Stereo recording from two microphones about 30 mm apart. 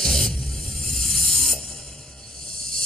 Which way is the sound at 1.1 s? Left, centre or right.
Centre.